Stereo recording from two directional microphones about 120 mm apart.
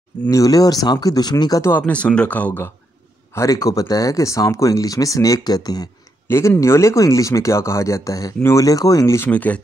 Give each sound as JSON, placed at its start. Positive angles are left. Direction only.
{"t": 0.3, "sound": "speech", "side_deg": 30}
{"t": 1.7, "sound": "speech", "side_deg": 15}
{"t": 3.3, "sound": "speech", "side_deg": 30}
{"t": 6.2, "sound": "speech", "side_deg": 20}
{"t": 9.3, "sound": "speech", "side_deg": 10}